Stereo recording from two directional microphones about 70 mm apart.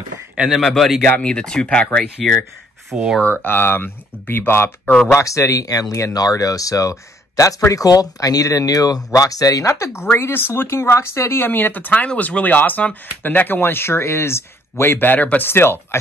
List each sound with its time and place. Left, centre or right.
0.5 s speech: centre
1.0 s speech: centre
2.9 s speech: centre
3.4 s speech: left
5.0 s speech: left
10.1 s speech: left